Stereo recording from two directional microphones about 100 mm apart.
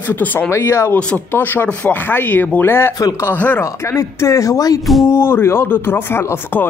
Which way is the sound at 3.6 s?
30° left (ahead or behind).